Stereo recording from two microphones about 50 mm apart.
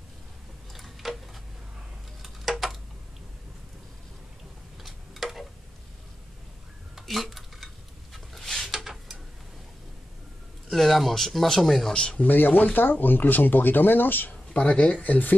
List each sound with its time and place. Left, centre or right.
0.7 s tick-tock: centre
4.8 s tick-tock: centre
7.0 s a sound: centre
10.7 s speech: centre
11.9 s speech: centre
12.2 s speech: left
14.5 s speech: left